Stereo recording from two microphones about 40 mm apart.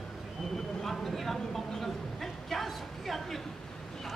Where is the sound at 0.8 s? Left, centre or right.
Centre.